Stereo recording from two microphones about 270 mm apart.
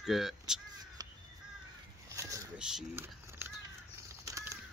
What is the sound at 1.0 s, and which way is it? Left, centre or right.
Crow, centre.